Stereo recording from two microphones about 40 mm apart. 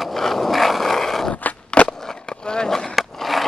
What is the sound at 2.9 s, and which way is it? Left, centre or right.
Skateboard, centre.